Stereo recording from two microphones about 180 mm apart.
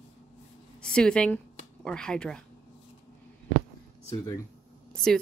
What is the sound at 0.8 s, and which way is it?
A woman's voice, 5° left (ahead or behind).